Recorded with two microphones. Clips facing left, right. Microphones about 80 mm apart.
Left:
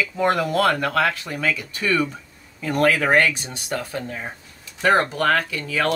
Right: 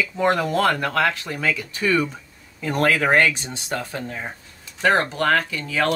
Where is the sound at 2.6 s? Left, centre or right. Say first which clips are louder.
Left 1 dB; right.